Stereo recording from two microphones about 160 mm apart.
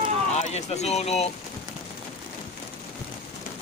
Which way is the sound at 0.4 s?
45° left (ahead or behind).